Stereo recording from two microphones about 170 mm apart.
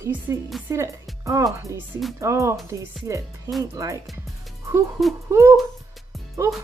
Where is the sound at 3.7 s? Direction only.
20° right (ahead or behind).